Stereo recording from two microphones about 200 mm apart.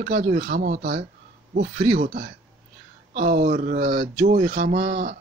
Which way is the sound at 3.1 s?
40° right (ahead or behind).